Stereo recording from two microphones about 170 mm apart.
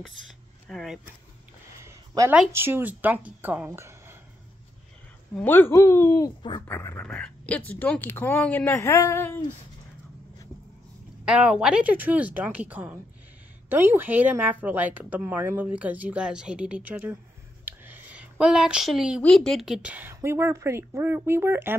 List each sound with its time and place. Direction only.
0.7 s speech: centre (ahead or behind)
1.9 s a sound: 15° right (ahead or behind)
2.5 s speech: 15° right (ahead or behind)
5.3 s speech: 10° left (ahead or behind)
11.2 s speech: 5° right (ahead or behind)
17.6 s a sound: 10° right (ahead or behind)
19.2 s speech: 5° left (ahead or behind); by 21.7 s 15° right (ahead or behind)